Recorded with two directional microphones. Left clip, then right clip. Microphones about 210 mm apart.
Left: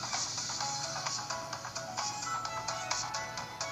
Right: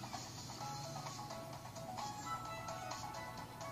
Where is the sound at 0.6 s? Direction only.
30° left (ahead or behind).